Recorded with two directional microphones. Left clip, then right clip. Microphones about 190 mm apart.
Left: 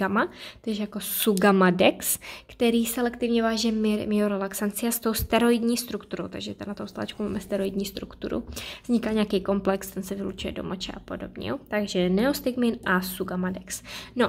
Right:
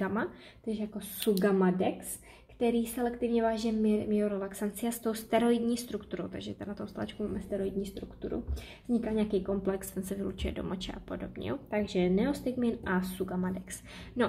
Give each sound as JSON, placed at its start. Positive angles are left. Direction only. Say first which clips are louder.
{"t": 0.0, "sound": "speech", "louder": "left 9 dB", "side_deg": 30}
{"t": 9.8, "sound": "speech", "louder": "left 4 dB", "side_deg": 15}